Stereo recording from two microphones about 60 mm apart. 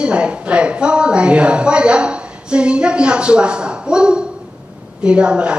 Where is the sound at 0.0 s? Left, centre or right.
Centre.